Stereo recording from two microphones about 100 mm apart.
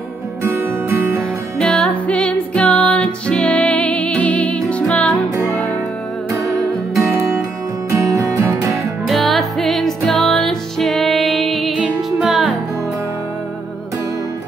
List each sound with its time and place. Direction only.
0.4 s music: 25° right (ahead or behind)
1.6 s music: 5° left (ahead or behind)
7.0 s music: 30° right (ahead or behind)
9.0 s music: centre (ahead or behind)